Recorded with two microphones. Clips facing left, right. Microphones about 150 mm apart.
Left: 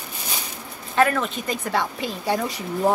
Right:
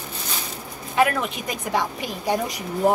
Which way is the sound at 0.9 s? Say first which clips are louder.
Left 1 dB; 10° right (ahead or behind).